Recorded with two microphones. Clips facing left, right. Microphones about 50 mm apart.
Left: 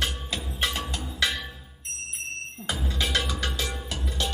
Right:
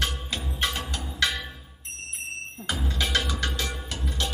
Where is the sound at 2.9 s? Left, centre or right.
Centre.